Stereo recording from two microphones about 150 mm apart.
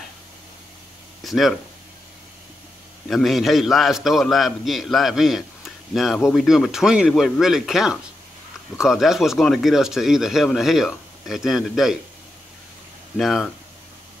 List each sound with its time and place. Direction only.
1.2 s a sound: centre (ahead or behind)
3.1 s a man's voice: centre (ahead or behind)
13.2 s a man's voice: centre (ahead or behind)